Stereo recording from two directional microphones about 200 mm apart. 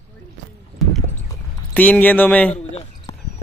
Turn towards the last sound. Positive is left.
turn(degrees=30)  # may be behind; listen again after turning